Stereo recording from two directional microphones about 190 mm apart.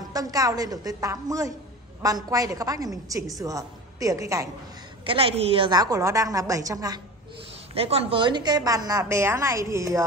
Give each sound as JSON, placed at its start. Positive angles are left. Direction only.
{"t": 0.1, "sound": "a woman's voice", "side_deg": -20}
{"t": 5.0, "sound": "a woman's voice", "side_deg": -30}
{"t": 7.7, "sound": "a woman's voice", "side_deg": -30}